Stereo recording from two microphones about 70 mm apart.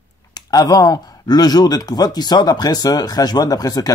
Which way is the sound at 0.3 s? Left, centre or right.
Left.